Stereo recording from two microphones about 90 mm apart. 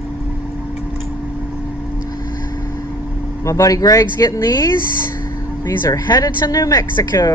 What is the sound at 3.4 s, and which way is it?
Speech, 35° left (ahead or behind).